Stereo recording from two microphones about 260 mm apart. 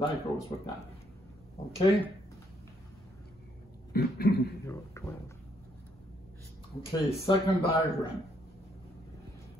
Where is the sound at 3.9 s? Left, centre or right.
Left.